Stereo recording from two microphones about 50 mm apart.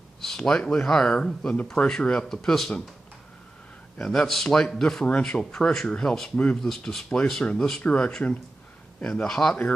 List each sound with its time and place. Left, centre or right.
0.2 s speech: centre
4.0 s speech: centre